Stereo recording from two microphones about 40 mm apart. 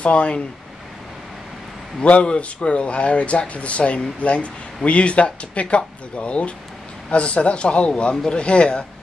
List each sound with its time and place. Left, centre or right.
0.0 s speech: left
2.0 s a man's voice: left